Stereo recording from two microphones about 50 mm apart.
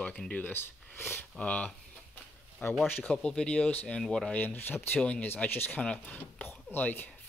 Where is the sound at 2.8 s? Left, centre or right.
Left.